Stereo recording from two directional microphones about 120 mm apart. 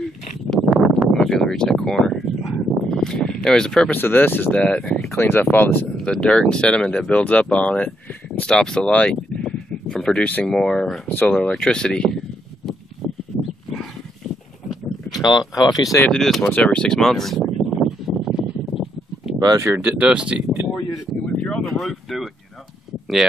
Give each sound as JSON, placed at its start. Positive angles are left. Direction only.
{"t": 0.5, "sound": "a sound", "side_deg": 0}
{"t": 4.0, "sound": "speech", "side_deg": 15}
{"t": 5.1, "sound": "speech", "side_deg": 20}
{"t": 15.2, "sound": "speech", "side_deg": 35}
{"t": 16.0, "sound": "speech", "side_deg": 5}
{"t": 16.4, "sound": "a sound", "side_deg": 10}
{"t": 19.4, "sound": "speech", "side_deg": -35}
{"t": 19.7, "sound": "speech", "side_deg": -15}
{"t": 20.4, "sound": "speech", "side_deg": 5}